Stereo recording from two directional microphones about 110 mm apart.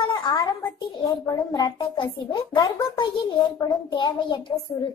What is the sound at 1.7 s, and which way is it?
A child's voice, 45° left (ahead or behind).